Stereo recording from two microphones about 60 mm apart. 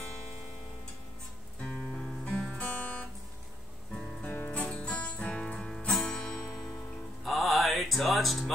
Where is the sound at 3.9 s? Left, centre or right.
Centre.